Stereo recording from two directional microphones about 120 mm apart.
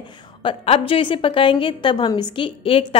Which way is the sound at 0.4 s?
50° left (ahead or behind).